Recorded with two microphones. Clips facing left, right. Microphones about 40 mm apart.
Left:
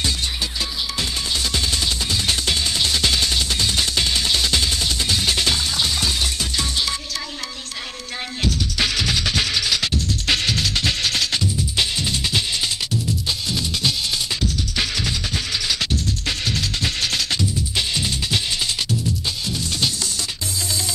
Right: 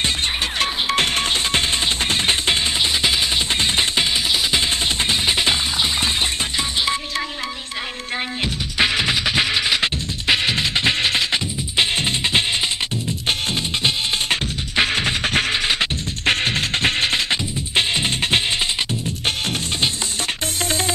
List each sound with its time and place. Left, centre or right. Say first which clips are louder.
0.6 s music: right 6 dB; right
3.5 s music: right 2 dB; right
8.7 s music: right 6 dB; right
19.2 s music: right 4 dB; right